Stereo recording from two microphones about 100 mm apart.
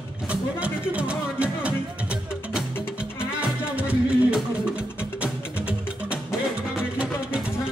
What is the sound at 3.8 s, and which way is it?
Music, 15° right (ahead or behind).